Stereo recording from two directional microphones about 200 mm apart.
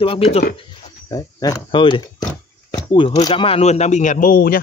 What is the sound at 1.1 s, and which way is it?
Speech, 20° left (ahead or behind).